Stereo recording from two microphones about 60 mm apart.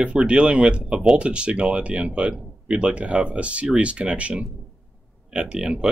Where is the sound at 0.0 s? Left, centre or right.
Right.